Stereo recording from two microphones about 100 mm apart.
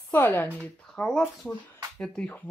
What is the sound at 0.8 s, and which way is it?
Speech, 5° left (ahead or behind).